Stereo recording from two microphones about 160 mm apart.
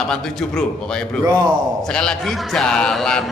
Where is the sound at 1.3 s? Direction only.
25° right (ahead or behind).